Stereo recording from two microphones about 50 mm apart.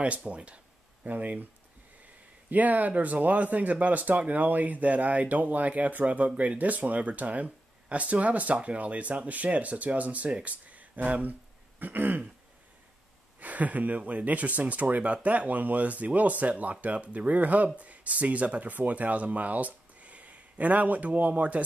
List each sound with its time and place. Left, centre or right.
0.0 s speech: right
2.5 s speech: right
13.4 s speech: right